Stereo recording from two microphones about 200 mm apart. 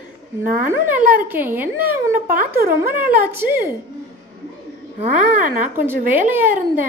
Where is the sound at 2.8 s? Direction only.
10° right (ahead or behind).